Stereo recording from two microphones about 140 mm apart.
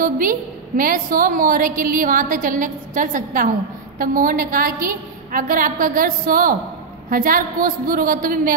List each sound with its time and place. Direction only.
0.0 s a woman's voice: 80° right